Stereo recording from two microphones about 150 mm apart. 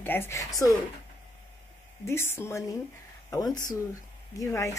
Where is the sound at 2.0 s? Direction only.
15° left (ahead or behind).